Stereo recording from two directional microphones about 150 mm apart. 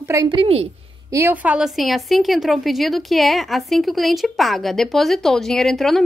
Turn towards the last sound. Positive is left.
turn(degrees=0)  # may be behind; listen again after turning